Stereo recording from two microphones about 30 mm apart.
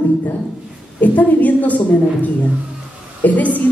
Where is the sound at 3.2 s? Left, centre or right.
Left.